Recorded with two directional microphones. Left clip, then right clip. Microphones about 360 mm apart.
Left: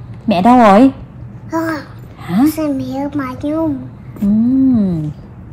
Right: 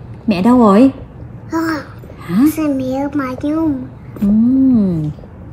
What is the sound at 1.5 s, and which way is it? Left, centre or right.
A child's voice, centre.